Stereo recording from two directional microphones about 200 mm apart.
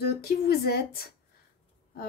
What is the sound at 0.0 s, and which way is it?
A woman's voice, 50° left (ahead or behind).